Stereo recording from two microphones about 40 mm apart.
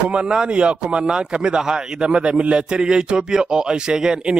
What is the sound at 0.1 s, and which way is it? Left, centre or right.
A man's voice, right.